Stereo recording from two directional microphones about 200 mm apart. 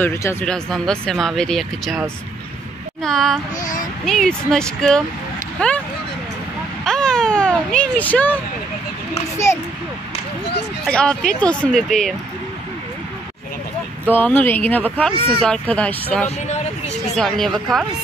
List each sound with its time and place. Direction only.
0.0 s speech: 15° left (ahead or behind)
6.8 s vehicle: 5° left (ahead or behind)
10.9 s speech: 5° left (ahead or behind)
14.1 s speech: 10° left (ahead or behind)
15.1 s speech: 25° right (ahead or behind)
15.4 s speech: 5° left (ahead or behind)
16.3 s speech: 35° left (ahead or behind)
17.2 s speech: centre (ahead or behind)